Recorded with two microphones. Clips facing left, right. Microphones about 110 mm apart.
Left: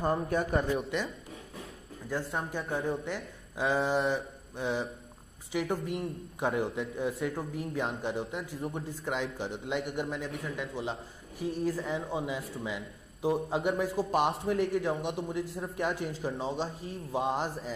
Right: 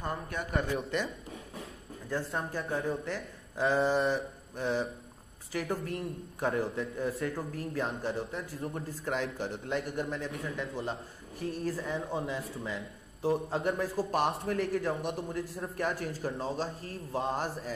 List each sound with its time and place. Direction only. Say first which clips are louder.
0.0 s a man's voice: left 7 dB; 40° left (ahead or behind)
0.7 s a man's voice: even; centre (ahead or behind)
2.3 s a man's voice: even; centre (ahead or behind)
5.9 s a man's voice: left 2 dB; centre (ahead or behind)
6.6 s speech: left 1 dB; 15° left (ahead or behind)
8.4 s a man's voice: left 1 dB; centre (ahead or behind)
9.1 s a man's voice: right 1 dB; 10° left (ahead or behind)
14.5 s speech: left 2 dB; 15° left (ahead or behind)